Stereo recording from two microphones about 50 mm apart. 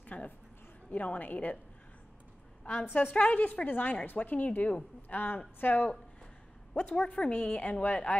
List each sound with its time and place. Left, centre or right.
0.0 s a sound: left
0.8 s speech: left
2.6 s a woman's voice: left
6.9 s a woman's voice: left